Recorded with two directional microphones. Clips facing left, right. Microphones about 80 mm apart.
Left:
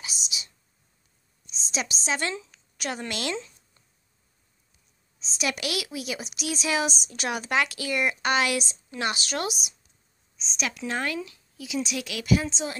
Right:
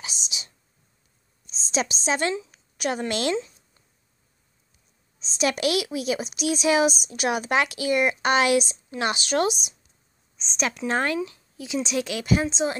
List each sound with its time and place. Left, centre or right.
0.1 s whispering: centre
1.7 s speech: right
5.4 s speech: right
10.3 s a sound: right
10.9 s speech: right